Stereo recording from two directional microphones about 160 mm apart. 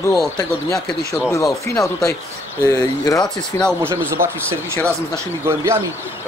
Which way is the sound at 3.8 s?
15° right (ahead or behind).